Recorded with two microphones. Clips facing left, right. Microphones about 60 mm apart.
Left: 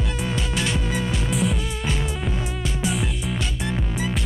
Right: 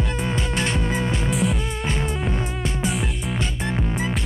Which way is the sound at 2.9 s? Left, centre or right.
Centre.